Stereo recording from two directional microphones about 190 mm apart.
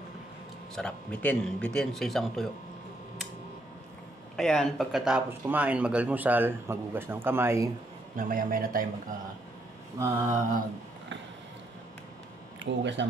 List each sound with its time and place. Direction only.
0.7 s speech: 5° left (ahead or behind)
4.4 s speech: 5° left (ahead or behind); by 7.7 s 15° right (ahead or behind)
8.2 s a man's voice: 45° right (ahead or behind)
9.9 s speech: 15° right (ahead or behind)
12.5 s speech: 70° right (ahead or behind)